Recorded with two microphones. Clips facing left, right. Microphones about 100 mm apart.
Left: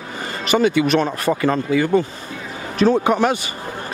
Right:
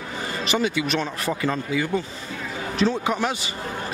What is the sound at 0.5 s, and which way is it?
Speech, 55° left (ahead or behind).